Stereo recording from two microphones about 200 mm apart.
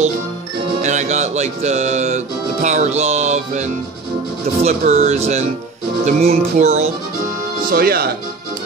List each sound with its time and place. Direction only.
0.8 s speech: 35° right (ahead or behind)
7.7 s speech: 50° right (ahead or behind)